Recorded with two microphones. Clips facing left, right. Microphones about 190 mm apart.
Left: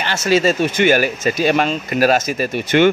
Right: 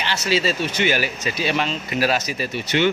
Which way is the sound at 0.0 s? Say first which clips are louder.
Left 6 dB; 50° left (ahead or behind).